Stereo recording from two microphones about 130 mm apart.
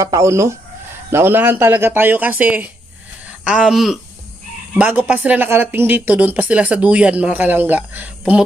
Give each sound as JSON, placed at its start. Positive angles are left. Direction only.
{"t": 0.0, "sound": "speech", "side_deg": -25}
{"t": 4.7, "sound": "speech", "side_deg": -10}